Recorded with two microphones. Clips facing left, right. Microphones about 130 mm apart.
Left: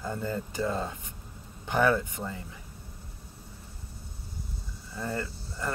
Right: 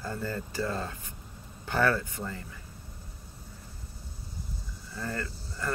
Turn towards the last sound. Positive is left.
turn(degrees=20)  # may be behind; listen again after turning